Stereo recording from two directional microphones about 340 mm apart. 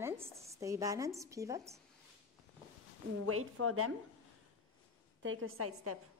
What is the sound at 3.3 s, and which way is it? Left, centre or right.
Speech, right.